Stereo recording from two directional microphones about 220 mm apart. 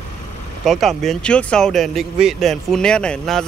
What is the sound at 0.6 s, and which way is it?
Speech, centre (ahead or behind).